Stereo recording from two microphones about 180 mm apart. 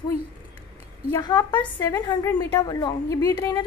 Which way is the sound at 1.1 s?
25° left (ahead or behind).